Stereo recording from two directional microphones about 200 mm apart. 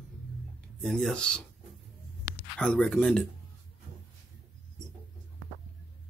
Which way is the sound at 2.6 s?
5° left (ahead or behind).